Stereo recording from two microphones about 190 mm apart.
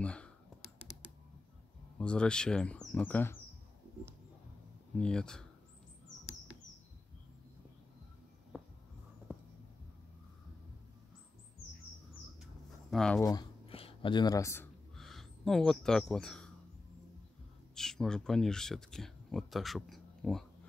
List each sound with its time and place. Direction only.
0.0 s computer keyboard: 5° left (ahead or behind)
2.0 s speech: 5° left (ahead or behind)
4.9 s speech: 5° left (ahead or behind)
12.9 s speech: 5° left (ahead or behind)
13.2 s a sound: 20° left (ahead or behind)
15.0 s speech: centre (ahead or behind)
17.7 s speech: 5° left (ahead or behind)